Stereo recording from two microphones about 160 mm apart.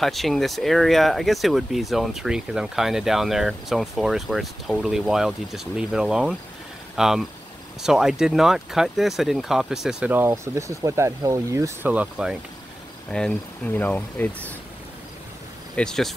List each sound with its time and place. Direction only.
0.0 s speech: centre (ahead or behind)
13.1 s speech: 5° left (ahead or behind)
15.7 s speech: 5° left (ahead or behind)